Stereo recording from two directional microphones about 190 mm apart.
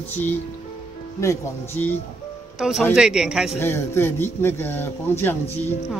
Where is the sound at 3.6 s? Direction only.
15° left (ahead or behind).